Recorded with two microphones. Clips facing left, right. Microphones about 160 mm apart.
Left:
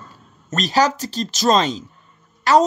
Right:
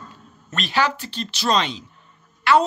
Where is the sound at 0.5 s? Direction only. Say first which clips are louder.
Left 5 dB; 40° left (ahead or behind).